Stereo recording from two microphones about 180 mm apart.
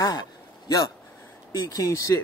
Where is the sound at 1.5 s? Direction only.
20° left (ahead or behind).